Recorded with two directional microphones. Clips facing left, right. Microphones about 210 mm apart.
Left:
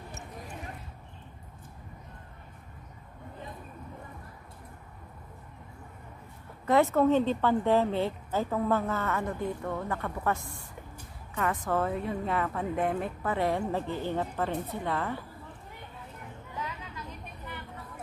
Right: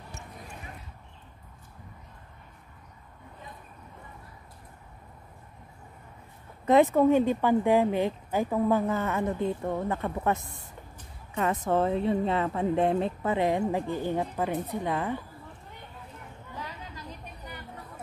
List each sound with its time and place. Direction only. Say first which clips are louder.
6.6 s a woman's voice: right 3 dB; 20° right (ahead or behind)
16.5 s chatter: left 1 dB; 35° right (ahead or behind)